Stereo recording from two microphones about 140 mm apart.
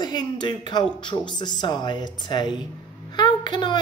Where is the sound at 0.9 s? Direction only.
35° left (ahead or behind).